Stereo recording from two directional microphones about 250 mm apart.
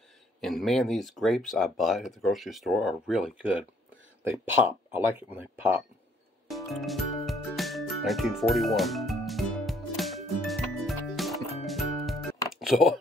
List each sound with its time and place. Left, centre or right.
0.4 s speech: centre
6.5 s music: centre
12.5 s a sound: centre